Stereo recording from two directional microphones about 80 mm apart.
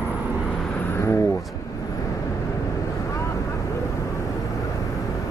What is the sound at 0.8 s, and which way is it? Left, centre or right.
Vehicle, left.